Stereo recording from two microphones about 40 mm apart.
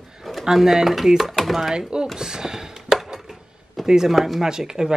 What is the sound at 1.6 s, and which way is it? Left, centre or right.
Speech, centre.